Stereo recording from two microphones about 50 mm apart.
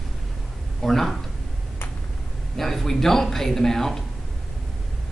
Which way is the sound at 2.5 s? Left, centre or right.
Centre.